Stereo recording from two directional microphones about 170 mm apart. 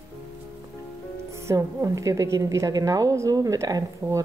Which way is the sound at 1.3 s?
20° right (ahead or behind).